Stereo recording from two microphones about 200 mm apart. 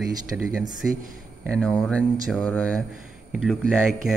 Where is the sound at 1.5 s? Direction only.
5° left (ahead or behind).